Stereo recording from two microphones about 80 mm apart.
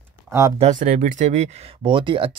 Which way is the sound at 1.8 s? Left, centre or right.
Right.